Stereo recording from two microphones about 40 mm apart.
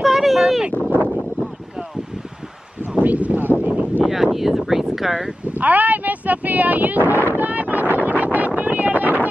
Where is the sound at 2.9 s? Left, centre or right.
Right.